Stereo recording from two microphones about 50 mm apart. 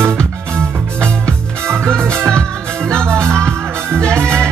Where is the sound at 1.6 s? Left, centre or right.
Right.